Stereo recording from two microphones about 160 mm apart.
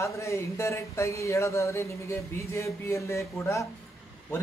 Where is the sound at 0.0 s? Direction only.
20° left (ahead or behind).